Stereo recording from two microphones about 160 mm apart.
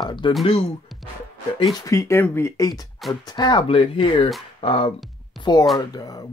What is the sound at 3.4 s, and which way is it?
Speech, 30° left (ahead or behind).